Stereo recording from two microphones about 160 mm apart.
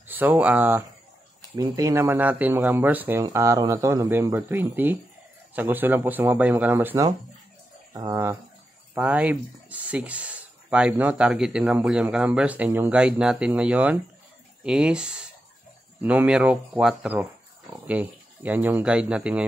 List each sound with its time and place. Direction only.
0.1 s speech: 10° right (ahead or behind)